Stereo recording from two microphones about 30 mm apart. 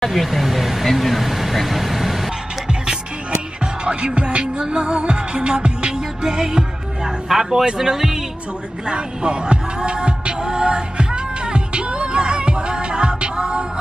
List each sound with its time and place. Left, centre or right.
0.0 s speech: centre
3.8 s music: right
7.1 s speech: centre
8.8 s music: right